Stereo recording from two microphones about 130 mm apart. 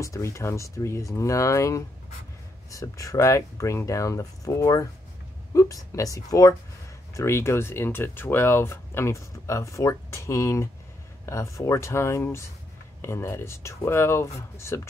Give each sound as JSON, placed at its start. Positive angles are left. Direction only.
{"t": 0.0, "sound": "speech", "side_deg": 20}